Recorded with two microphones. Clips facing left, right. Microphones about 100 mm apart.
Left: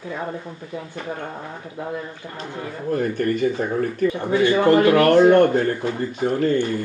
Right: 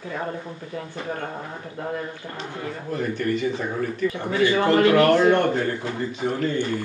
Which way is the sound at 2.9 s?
45° left (ahead or behind).